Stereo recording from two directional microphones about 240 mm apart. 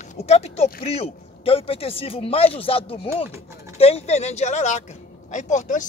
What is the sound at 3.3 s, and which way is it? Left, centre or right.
Speech, centre.